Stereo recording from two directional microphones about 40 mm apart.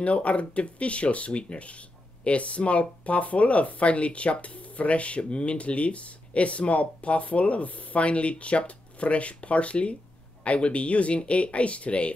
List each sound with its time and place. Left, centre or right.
0.0 s speech: left